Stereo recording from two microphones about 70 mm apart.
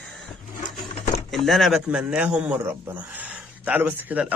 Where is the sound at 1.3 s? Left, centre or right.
Centre.